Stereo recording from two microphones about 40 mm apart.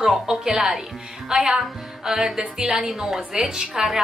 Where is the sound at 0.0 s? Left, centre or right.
Centre.